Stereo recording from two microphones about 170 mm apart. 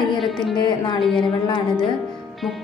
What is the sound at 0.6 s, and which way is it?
Speech, 25° left (ahead or behind).